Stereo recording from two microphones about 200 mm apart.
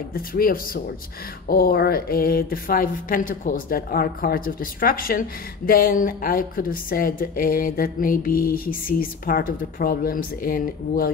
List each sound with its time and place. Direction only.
0.1 s a woman's voice: 45° left (ahead or behind)